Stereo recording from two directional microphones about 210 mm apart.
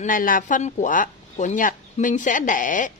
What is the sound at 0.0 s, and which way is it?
Speech, 40° left (ahead or behind).